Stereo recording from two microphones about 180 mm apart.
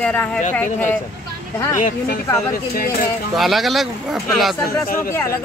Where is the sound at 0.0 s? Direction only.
5° left (ahead or behind).